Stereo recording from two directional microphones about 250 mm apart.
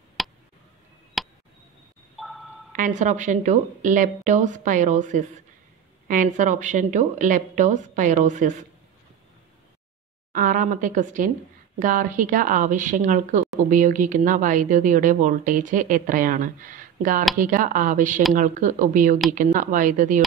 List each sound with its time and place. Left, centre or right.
0.2 s a sound: centre
2.7 s a woman's voice: right
10.3 s speech: right